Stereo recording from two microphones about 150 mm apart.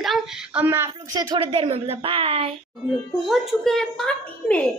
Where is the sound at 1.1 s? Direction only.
25° right (ahead or behind).